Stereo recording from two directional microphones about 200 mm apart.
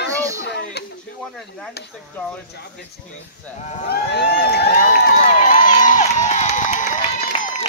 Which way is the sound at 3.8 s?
55° left (ahead or behind).